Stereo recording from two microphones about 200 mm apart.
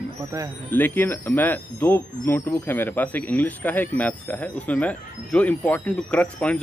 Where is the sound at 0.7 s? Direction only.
10° left (ahead or behind).